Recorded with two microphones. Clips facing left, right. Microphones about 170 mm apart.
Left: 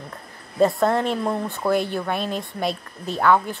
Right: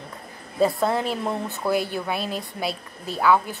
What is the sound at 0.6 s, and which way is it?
Speech, centre (ahead or behind).